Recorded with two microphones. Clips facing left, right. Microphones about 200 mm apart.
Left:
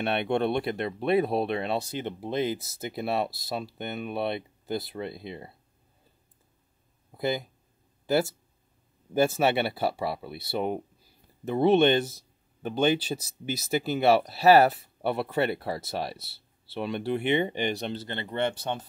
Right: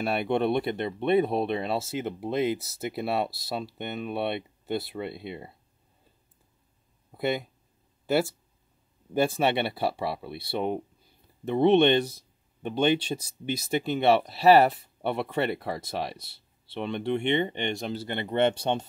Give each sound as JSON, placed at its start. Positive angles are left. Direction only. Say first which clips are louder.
{"t": 0.0, "sound": "speech", "louder": "even", "side_deg": 0}
{"t": 7.2, "sound": "speech", "louder": "right 1 dB", "side_deg": 0}
{"t": 9.4, "sound": "speech", "louder": "left 1 dB", "side_deg": 5}
{"t": 17.9, "sound": "speech", "louder": "right 4 dB", "side_deg": -15}